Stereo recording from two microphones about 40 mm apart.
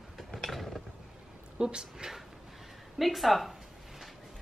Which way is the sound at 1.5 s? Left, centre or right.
Right.